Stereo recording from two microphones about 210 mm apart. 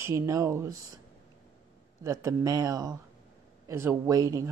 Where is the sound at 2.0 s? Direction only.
15° right (ahead or behind).